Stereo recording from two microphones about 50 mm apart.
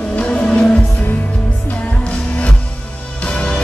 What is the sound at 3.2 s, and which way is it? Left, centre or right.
Music, centre.